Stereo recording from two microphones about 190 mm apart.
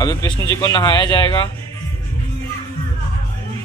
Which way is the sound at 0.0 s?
20° left (ahead or behind).